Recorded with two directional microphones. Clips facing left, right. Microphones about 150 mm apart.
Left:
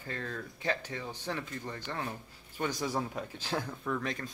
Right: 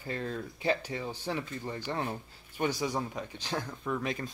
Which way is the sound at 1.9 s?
25° right (ahead or behind).